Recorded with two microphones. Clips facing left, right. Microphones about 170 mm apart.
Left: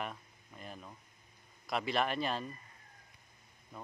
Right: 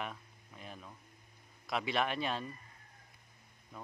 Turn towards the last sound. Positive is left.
turn(degrees=0)  # may be behind; listen again after turning